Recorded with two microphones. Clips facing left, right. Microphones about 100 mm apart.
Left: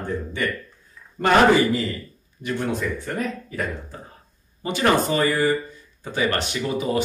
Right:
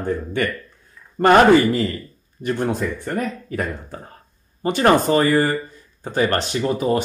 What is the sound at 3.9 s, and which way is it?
Speech, 65° right (ahead or behind).